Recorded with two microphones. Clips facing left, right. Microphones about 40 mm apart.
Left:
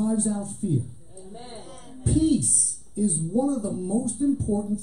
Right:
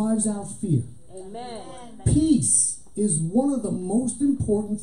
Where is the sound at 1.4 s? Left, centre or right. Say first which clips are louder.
Right 6 dB; right.